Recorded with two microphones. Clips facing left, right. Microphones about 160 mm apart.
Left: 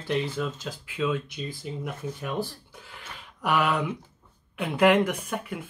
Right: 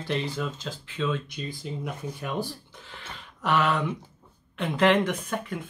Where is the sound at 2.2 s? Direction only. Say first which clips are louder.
Even; 10° left (ahead or behind).